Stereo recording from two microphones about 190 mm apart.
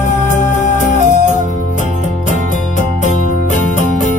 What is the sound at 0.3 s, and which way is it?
Music, 40° left (ahead or behind).